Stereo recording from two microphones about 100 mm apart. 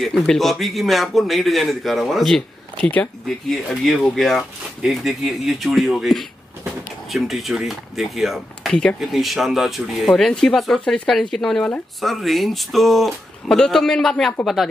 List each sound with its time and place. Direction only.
0.0 s speech: 5° left (ahead or behind)
2.8 s speech: 15° left (ahead or behind)